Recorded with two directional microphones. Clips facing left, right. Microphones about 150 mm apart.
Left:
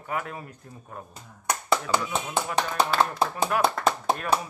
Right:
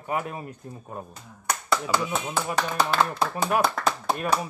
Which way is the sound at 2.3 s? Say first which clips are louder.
Left 3 dB; 20° left (ahead or behind).